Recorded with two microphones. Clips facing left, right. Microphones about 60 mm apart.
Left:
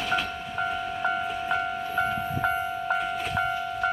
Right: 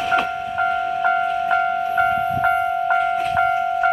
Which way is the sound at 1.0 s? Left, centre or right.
Right.